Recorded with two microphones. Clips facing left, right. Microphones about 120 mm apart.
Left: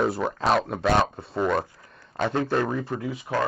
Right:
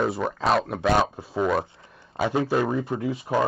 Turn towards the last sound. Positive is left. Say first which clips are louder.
# right 3 dB
turn(degrees=-25)  # may be behind; listen again after turning